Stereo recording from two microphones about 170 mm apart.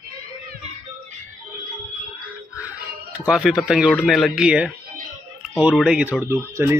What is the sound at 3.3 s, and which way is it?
Speech, 5° right (ahead or behind).